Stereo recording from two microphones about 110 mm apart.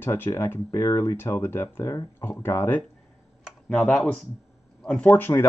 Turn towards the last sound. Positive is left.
turn(degrees=20)  # may be behind; listen again after turning